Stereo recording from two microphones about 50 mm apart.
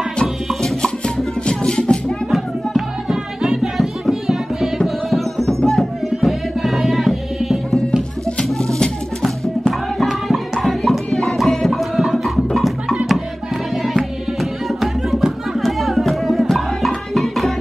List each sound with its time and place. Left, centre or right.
0.6 s music: centre
2.3 s music: centre
8.5 s music: centre
9.2 s music: centre
11.1 s music: centre
11.3 s music: centre